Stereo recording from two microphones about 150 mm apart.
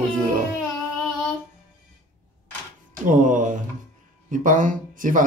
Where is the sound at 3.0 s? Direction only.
60° right (ahead or behind).